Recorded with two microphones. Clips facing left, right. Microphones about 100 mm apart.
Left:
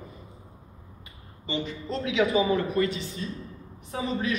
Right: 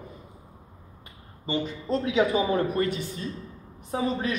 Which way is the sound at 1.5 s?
45° right (ahead or behind).